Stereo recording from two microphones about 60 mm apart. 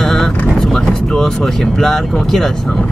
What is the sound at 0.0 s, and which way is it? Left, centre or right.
Vehicle, centre.